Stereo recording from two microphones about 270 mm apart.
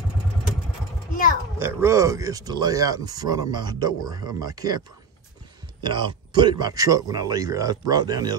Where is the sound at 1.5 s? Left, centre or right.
Centre.